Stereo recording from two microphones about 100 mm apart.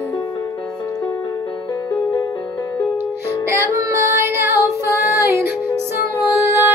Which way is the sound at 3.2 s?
25° right (ahead or behind).